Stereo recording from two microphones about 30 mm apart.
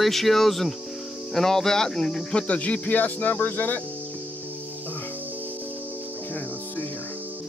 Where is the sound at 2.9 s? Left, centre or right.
Left.